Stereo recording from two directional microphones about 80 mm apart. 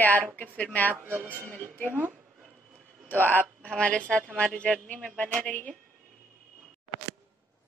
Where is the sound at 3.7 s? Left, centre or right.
Centre.